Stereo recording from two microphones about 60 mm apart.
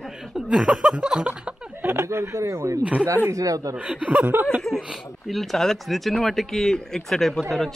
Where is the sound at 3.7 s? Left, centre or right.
Right.